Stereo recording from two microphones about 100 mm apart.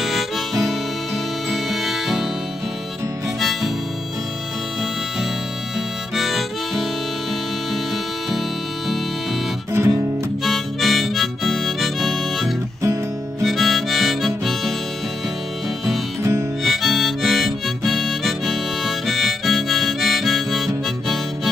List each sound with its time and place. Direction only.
0.0 s harmonica: centre (ahead or behind)
3.3 s harmonica: centre (ahead or behind)
6.1 s harmonica: centre (ahead or behind)
8.3 s music: centre (ahead or behind)
9.7 s music: 30° right (ahead or behind)
10.4 s harmonica: centre (ahead or behind)
16.2 s harmonica: 30° right (ahead or behind)
16.6 s harmonica: centre (ahead or behind)